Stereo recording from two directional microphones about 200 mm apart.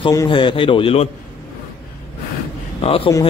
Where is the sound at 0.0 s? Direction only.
20° left (ahead or behind).